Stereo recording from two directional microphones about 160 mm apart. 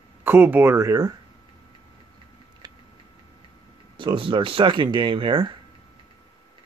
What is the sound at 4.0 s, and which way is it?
Speech, 30° right (ahead or behind).